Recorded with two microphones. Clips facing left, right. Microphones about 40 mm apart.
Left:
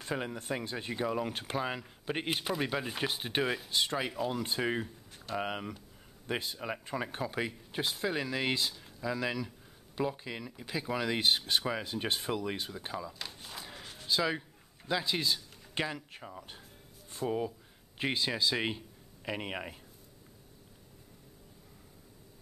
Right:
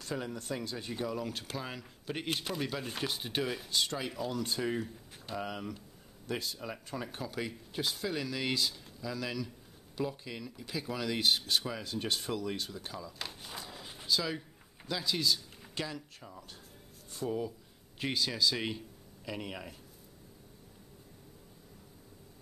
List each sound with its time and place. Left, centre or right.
0.0 s speech: left
13.2 s a sound: centre
14.0 s speech: left